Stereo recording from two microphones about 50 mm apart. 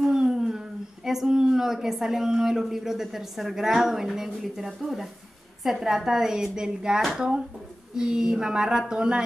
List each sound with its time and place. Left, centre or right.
0.0 s a woman's voice: centre